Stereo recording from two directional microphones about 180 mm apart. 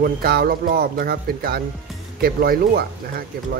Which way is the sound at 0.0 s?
60° right (ahead or behind).